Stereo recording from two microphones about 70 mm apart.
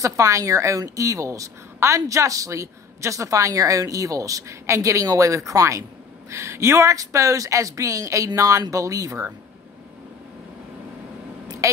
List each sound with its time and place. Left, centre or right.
0.0 s a woman's voice: right
11.6 s a woman's voice: right